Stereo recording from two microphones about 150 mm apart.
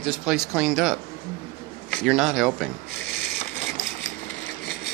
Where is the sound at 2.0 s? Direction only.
Centre (ahead or behind).